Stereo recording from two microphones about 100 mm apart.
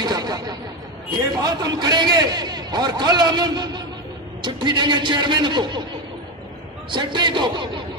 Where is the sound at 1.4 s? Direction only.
40° right (ahead or behind).